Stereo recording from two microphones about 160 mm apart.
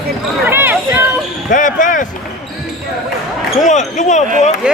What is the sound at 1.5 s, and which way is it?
Speech, 55° left (ahead or behind).